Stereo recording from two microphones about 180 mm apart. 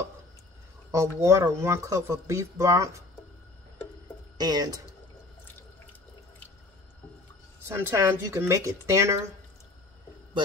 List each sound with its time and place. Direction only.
0.9 s speech: 15° right (ahead or behind)
4.4 s speech: 20° right (ahead or behind)
7.6 s speech: 15° right (ahead or behind)